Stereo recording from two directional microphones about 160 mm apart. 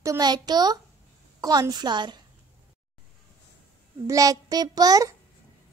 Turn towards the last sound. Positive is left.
turn(degrees=-20)  # may be behind; listen again after turning